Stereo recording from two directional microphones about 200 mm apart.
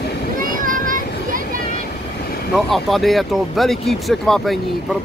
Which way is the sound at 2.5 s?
Centre (ahead or behind).